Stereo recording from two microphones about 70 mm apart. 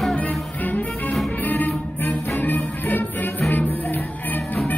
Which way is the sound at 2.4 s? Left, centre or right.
Left.